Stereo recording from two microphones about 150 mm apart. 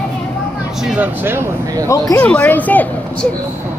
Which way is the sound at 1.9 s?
20° left (ahead or behind).